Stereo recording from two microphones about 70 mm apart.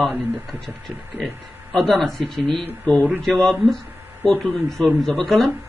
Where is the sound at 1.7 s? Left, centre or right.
Centre.